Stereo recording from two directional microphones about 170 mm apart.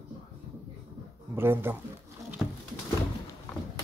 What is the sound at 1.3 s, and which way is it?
Speech, 15° right (ahead or behind).